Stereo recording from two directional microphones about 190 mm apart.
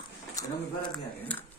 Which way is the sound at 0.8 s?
10° left (ahead or behind).